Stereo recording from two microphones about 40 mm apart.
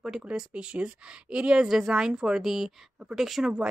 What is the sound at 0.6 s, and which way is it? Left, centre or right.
Speech, right.